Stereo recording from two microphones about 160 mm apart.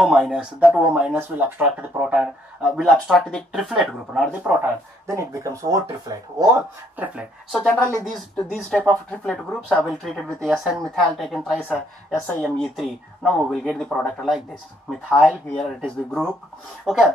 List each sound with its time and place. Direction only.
0.0 s speech: 5° right (ahead or behind)
5.0 s speech: 20° right (ahead or behind)
7.0 s speech: 10° right (ahead or behind)
7.6 s speech: 5° left (ahead or behind)
11.7 s speech: 10° left (ahead or behind)
12.5 s speech: centre (ahead or behind)